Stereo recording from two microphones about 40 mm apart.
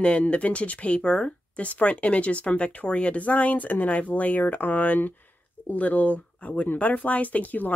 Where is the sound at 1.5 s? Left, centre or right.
Left.